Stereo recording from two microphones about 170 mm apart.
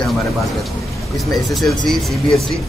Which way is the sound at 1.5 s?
Centre (ahead or behind).